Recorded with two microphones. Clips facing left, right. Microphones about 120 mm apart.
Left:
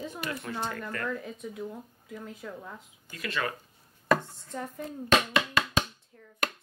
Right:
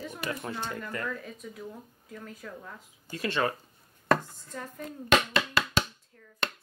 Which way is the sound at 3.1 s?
30° right (ahead or behind).